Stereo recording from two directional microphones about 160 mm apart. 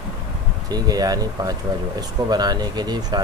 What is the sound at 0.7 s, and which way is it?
Speech, 25° right (ahead or behind).